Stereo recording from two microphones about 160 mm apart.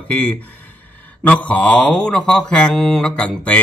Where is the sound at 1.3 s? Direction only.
10° left (ahead or behind).